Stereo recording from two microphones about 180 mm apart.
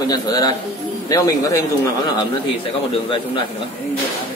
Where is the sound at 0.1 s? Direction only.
20° left (ahead or behind).